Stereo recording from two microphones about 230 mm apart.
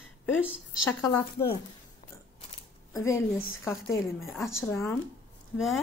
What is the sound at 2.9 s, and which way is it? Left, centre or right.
Speech, centre.